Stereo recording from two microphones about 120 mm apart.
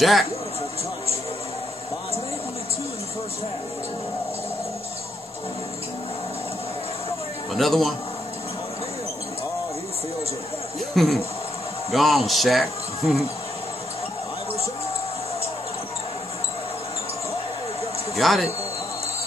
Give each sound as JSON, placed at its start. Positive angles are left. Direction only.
{"t": 0.0, "sound": "a man's voice", "side_deg": 0}
{"t": 7.5, "sound": "a man's voice", "side_deg": 0}
{"t": 10.9, "sound": "speech", "side_deg": 0}
{"t": 18.1, "sound": "a man's voice", "side_deg": 0}